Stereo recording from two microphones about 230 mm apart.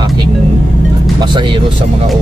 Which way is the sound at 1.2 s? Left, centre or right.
Right.